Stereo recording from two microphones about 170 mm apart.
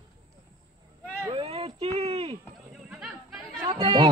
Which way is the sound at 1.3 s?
35° right (ahead or behind).